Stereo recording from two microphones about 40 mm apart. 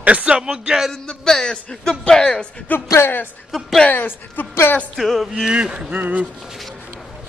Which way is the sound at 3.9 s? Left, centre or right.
Left.